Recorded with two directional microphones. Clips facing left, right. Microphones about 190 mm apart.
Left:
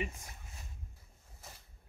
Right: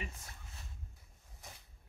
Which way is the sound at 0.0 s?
15° left (ahead or behind).